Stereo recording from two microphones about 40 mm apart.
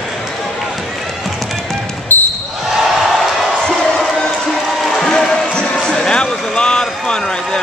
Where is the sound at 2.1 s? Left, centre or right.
Left.